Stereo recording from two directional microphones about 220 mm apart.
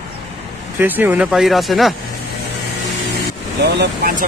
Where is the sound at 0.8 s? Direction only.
10° right (ahead or behind).